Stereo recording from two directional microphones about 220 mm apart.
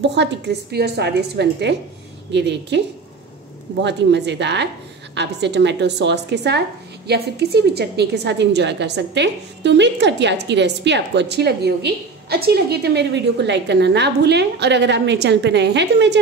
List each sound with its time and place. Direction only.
0.0 s a woman's voice: 50° right (ahead or behind)
3.8 s a woman's voice: 50° right (ahead or behind)